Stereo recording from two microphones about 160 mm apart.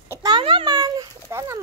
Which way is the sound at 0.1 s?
25° right (ahead or behind).